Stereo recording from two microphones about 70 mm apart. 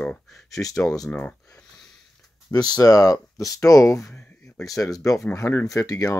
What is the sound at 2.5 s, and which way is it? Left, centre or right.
Speech, left.